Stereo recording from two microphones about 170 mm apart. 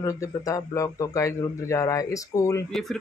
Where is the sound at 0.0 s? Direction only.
20° left (ahead or behind).